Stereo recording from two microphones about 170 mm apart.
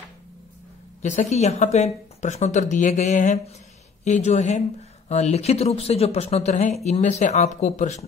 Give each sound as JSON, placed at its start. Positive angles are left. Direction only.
{"t": 1.0, "sound": "speech", "side_deg": 45}